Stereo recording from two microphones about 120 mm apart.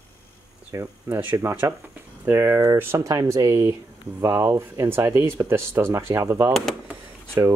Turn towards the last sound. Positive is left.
turn(degrees=-20)  # may be behind; listen again after turning